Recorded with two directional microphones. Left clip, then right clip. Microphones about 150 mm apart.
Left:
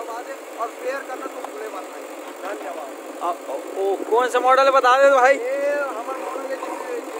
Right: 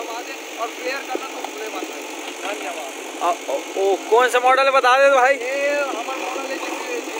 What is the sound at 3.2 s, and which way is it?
Speech, 5° right (ahead or behind).